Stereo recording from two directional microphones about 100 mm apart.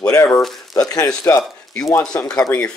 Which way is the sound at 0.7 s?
40° left (ahead or behind).